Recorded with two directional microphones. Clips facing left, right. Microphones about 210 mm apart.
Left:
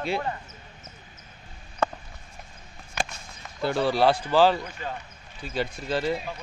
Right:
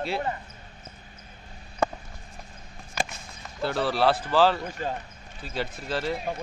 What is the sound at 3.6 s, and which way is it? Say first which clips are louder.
Speech: left 2 dB; centre (ahead or behind).